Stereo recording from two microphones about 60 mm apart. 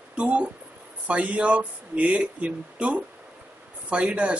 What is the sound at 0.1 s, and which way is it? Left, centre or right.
Speech, right.